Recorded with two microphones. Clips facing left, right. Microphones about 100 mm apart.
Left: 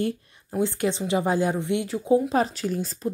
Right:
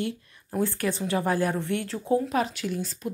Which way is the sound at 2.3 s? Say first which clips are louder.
Left 3 dB; 35° left (ahead or behind).